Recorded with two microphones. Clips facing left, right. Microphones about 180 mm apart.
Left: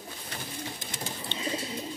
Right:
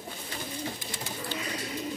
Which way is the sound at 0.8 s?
25° left (ahead or behind).